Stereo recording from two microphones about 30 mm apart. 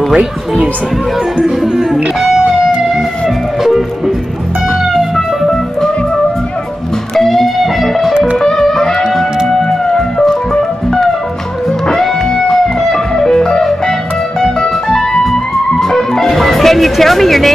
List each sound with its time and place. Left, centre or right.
0.1 s speech: right
1.6 s music: centre
3.6 s music: centre
4.9 s music: centre
7.2 s music: centre
8.4 s music: centre
17.0 s speech: centre